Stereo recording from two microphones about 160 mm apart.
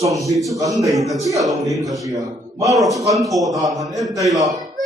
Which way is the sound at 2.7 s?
Centre (ahead or behind).